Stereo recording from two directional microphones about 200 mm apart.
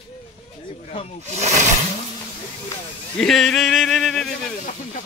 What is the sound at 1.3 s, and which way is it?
Speech, 35° right (ahead or behind).